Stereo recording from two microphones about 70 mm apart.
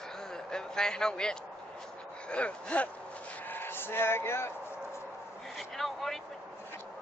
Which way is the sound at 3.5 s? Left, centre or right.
Left.